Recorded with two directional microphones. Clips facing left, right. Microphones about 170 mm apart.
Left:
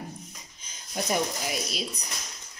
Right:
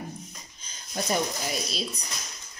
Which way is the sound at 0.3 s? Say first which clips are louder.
Right 1 dB; 5° left (ahead or behind).